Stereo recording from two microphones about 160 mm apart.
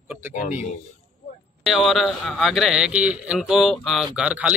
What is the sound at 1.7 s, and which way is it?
Speech, centre (ahead or behind).